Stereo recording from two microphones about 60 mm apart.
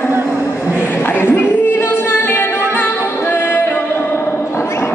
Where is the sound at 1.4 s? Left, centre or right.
Left.